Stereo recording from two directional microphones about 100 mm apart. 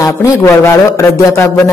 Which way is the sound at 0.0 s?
25° left (ahead or behind).